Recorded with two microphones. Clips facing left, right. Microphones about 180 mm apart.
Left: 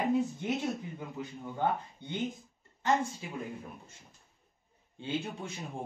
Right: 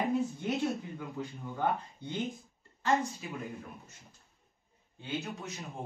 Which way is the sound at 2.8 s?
25° left (ahead or behind).